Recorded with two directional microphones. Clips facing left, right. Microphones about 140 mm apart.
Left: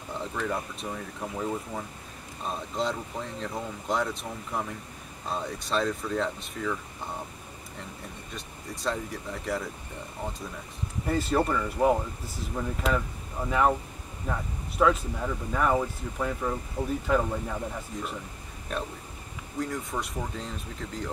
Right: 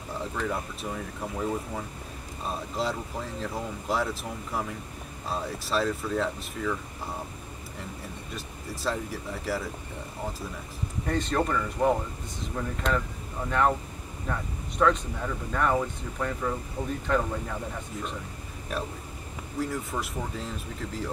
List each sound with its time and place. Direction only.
0.1 s speech: centre (ahead or behind)
8.4 s speech: centre (ahead or behind)
11.1 s speech: 5° left (ahead or behind)
19.6 s speech: centre (ahead or behind)